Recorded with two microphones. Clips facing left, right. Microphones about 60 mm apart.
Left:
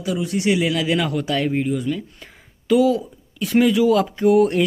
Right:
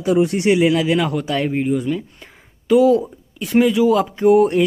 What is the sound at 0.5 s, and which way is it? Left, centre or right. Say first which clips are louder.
Speech: right 5 dB; centre.